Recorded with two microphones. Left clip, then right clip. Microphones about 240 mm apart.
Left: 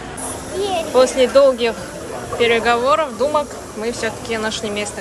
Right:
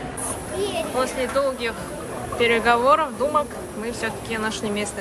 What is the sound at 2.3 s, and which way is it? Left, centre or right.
Speech, centre.